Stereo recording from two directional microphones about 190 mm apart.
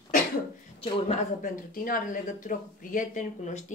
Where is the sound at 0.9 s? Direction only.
35° left (ahead or behind).